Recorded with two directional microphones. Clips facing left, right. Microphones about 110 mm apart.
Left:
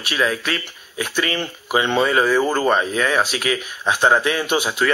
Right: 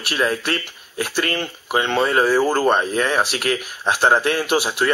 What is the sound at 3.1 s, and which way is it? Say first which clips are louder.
Speech: even; 5° right (ahead or behind).